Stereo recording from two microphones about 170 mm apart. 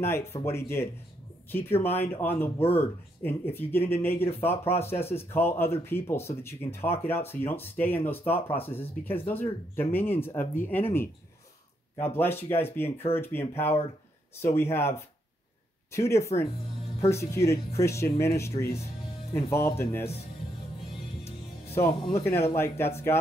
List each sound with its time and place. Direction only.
0.0 s speech: 15° left (ahead or behind)
22.1 s speech: 15° left (ahead or behind)